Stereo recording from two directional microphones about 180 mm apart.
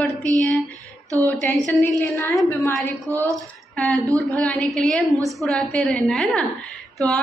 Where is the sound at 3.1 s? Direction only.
15° right (ahead or behind).